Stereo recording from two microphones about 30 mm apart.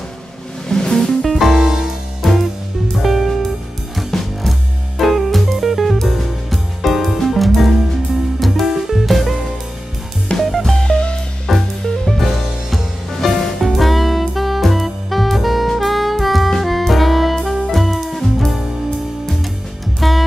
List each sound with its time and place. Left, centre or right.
0.7 s music: left
1.2 s music: centre
1.6 s music: centre
3.0 s music: centre
8.6 s music: centre
9.0 s music: centre
10.3 s music: left
11.4 s music: centre
13.2 s music: centre
13.6 s saxophone: centre
17.4 s music: centre
20.0 s music: centre